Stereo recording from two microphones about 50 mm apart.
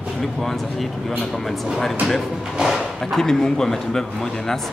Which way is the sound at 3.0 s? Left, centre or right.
Centre.